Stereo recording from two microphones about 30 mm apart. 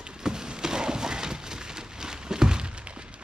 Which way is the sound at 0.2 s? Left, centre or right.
Right.